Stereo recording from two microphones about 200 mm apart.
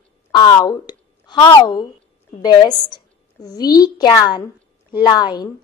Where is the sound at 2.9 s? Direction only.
20° left (ahead or behind).